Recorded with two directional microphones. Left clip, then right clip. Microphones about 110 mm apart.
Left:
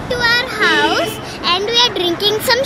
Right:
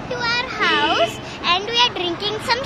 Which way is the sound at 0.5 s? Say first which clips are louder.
Left 4 dB; 25° left (ahead or behind).